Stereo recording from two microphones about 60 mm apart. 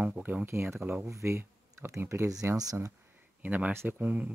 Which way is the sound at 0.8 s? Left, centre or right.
Right.